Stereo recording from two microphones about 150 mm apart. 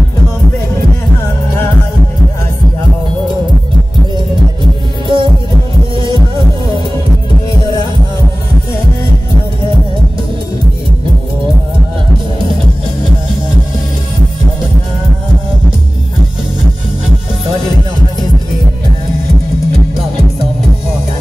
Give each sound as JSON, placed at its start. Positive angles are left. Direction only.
{"t": 5.0, "sound": "music", "side_deg": -35}